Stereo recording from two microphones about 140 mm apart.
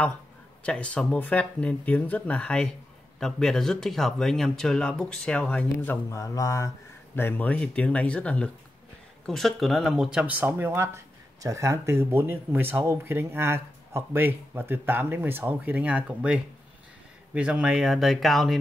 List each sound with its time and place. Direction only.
0.7 s speech: 10° left (ahead or behind)
6.0 s speech: 20° left (ahead or behind)
7.2 s speech: 15° left (ahead or behind)